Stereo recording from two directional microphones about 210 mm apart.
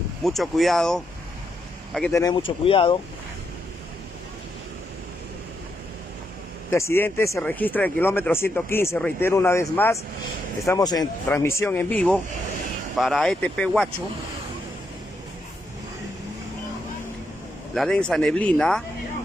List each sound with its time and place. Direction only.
0.2 s speech: centre (ahead or behind)
2.1 s speech: 20° left (ahead or behind)
6.7 s speech: 10° left (ahead or behind)
17.7 s speech: 5° left (ahead or behind)